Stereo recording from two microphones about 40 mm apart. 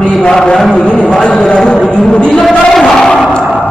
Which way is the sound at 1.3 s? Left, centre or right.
Centre.